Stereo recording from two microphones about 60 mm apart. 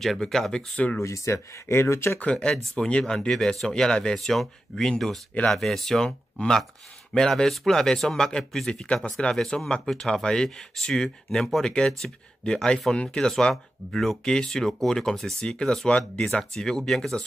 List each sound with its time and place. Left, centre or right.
0.0 s speech: centre
1.0 s speech: left
2.3 s speech: centre